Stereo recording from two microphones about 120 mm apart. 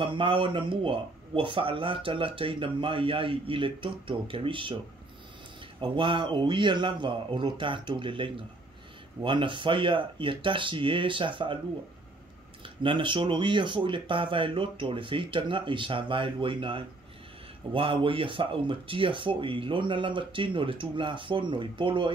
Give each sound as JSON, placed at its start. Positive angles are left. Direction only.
{"t": 0.0, "sound": "speech", "side_deg": -45}
{"t": 5.8, "sound": "speech", "side_deg": -45}
{"t": 12.6, "sound": "speech", "side_deg": -45}